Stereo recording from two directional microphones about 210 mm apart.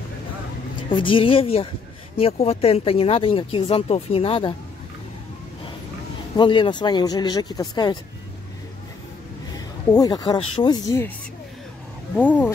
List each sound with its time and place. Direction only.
0.8 s speech: 25° left (ahead or behind)
6.3 s speech: 25° left (ahead or behind)
9.9 s speech: 20° left (ahead or behind)
12.2 s speech: 5° left (ahead or behind)